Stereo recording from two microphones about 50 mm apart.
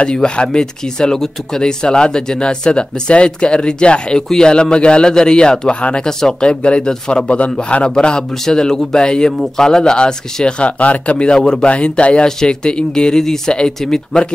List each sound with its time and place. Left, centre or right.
0.0 s speech: centre